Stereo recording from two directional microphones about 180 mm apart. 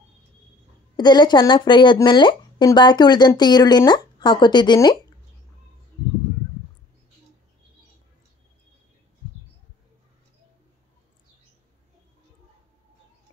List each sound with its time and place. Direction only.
0.9 s speech: 25° left (ahead or behind)